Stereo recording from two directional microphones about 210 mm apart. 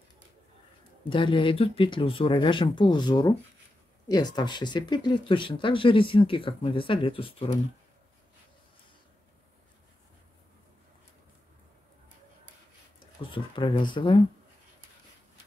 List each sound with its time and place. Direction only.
1.0 s speech: 25° left (ahead or behind)
13.2 s speech: 25° left (ahead or behind)